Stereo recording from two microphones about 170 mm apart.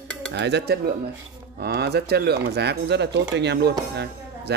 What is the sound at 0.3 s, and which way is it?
Speech, 85° right.